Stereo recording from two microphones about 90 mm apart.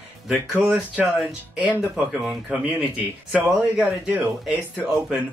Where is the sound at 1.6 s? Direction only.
15° right (ahead or behind).